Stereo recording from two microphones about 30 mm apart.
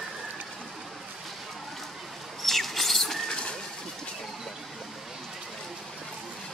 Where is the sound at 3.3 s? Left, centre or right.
Left.